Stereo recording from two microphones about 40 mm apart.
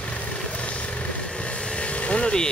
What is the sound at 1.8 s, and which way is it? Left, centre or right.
Vehicle, left.